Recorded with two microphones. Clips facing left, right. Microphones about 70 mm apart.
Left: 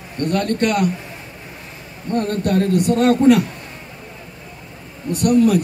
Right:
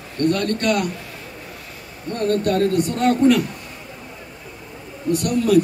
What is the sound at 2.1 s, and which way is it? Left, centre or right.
Speech, left.